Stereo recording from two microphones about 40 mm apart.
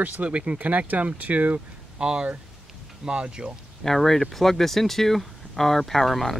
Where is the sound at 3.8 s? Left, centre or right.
Centre.